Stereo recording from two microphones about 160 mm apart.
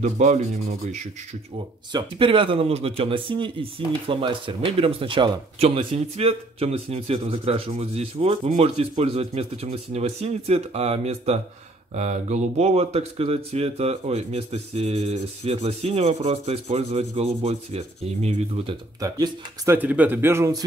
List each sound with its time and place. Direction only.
0.0 s speech: 45° right (ahead or behind)
1.9 s speech: 30° right (ahead or behind)
18.9 s speech: 20° right (ahead or behind)